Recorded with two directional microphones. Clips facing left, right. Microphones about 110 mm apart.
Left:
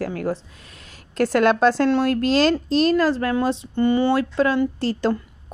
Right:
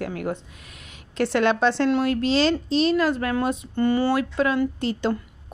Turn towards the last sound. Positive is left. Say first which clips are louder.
# left 3 dB
turn(degrees=35)  # may be behind; listen again after turning